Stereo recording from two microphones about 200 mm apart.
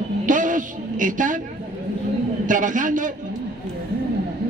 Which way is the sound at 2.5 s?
40° right (ahead or behind).